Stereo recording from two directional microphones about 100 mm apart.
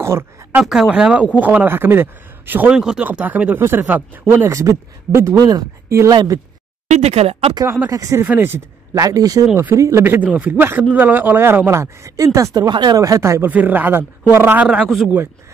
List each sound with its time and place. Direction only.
0.0 s speech: 25° right (ahead or behind)
0.6 s speech: 10° right (ahead or behind)
2.7 s speech: 5° right (ahead or behind)
4.5 s speech: 30° right (ahead or behind)
7.0 s speech: 90° right
7.6 s speech: 25° right (ahead or behind)
7.9 s speech: 35° right (ahead or behind)
8.3 s speech: 20° right (ahead or behind)
8.9 s speech: 35° right (ahead or behind)
12.6 s speech: 45° right (ahead or behind); by 13.5 s 30° right (ahead or behind)
13.5 s speech: 15° right (ahead or behind)
14.7 s speech: 5° right (ahead or behind)